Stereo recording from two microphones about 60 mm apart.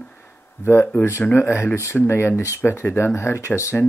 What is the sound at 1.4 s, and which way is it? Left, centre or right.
Speech, left.